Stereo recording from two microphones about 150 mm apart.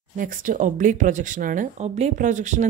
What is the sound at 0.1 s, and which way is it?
Speech, 60° right (ahead or behind).